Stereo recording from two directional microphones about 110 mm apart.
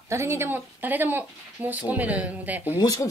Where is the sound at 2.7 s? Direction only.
35° left (ahead or behind).